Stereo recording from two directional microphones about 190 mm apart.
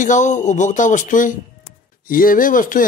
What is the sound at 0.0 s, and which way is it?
Speech, 40° left (ahead or behind).